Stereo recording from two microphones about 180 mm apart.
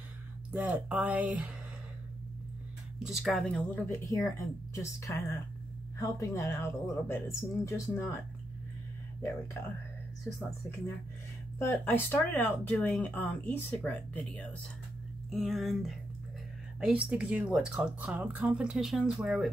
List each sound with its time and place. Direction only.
0.5 s speech: 5° right (ahead or behind)
3.0 s speech: centre (ahead or behind); by 8.2 s 15° left (ahead or behind)
11.5 s speech: 10° left (ahead or behind)